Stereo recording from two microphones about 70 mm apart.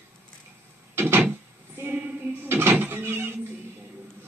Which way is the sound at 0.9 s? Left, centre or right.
Right.